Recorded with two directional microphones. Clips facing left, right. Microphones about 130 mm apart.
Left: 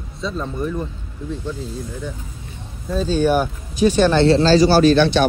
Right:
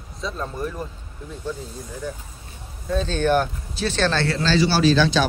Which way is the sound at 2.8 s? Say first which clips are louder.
Left 3 dB; 5° left (ahead or behind).